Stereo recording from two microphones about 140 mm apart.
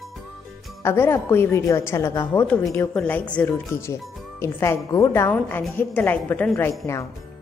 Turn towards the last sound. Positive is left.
turn(degrees=20)  # may be behind; listen again after turning